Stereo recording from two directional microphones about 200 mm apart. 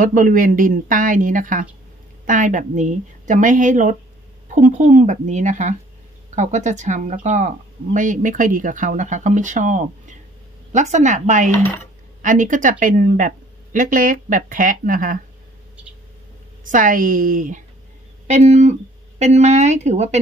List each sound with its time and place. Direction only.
0.0 s speech: 40° right (ahead or behind)
16.6 s speech: 40° right (ahead or behind)